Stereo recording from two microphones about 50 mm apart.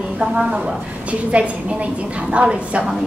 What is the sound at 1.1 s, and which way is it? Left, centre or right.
A woman's voice, right.